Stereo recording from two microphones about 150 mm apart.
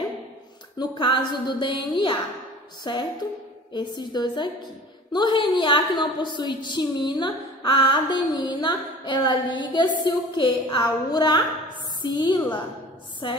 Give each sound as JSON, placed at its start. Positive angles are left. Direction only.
{"t": 0.7, "sound": "a woman's voice", "side_deg": 35}